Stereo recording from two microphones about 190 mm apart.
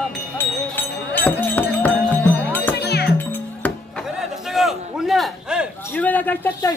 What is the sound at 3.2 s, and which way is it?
Music, 10° left (ahead or behind).